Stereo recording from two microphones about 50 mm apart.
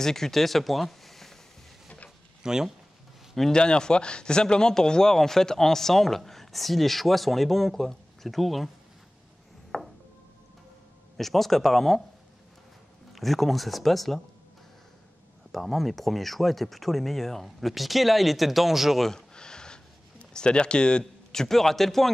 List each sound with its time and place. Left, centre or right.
0.0 s speech: centre
2.4 s speech: centre
3.5 s speech: centre
9.7 s chopping: centre
11.1 s speech: centre
13.1 s speech: centre
15.5 s speech: centre
19.0 s a sound: centre
21.0 s speech: centre